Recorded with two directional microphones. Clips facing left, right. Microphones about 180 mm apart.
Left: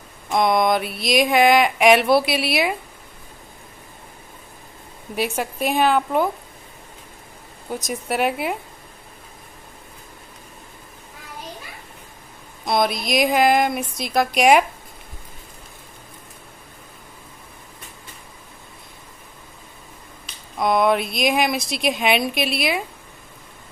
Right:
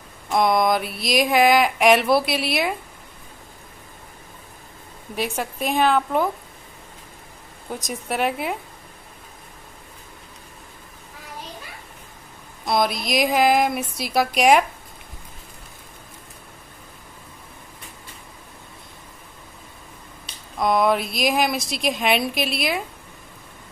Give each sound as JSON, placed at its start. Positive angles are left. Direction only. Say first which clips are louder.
{"t": 0.3, "sound": "speech", "louder": "left 1 dB", "side_deg": 0}
{"t": 5.1, "sound": "speech", "louder": "left 2 dB", "side_deg": 5}
{"t": 7.7, "sound": "speech", "louder": "left 2 dB", "side_deg": 0}
{"t": 12.6, "sound": "speech", "louder": "left 1 dB", "side_deg": 0}
{"t": 20.5, "sound": "speech", "louder": "left 1 dB", "side_deg": 0}